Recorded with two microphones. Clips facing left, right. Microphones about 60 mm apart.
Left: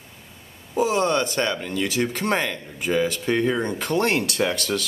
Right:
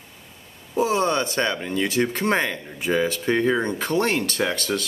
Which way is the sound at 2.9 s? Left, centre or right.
Centre.